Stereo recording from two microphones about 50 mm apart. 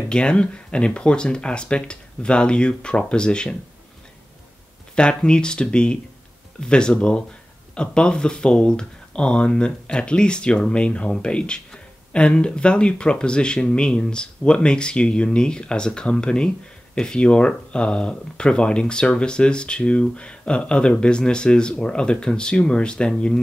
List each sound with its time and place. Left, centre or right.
0.1 s speech: centre
4.9 s speech: centre